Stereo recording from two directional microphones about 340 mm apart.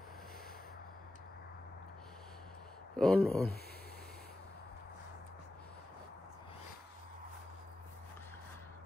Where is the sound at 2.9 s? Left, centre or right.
Centre.